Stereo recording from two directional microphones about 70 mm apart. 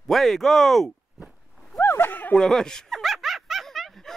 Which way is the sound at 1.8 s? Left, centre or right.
Left.